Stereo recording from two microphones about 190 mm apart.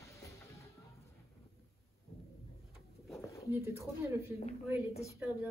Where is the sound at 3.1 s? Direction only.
15° left (ahead or behind).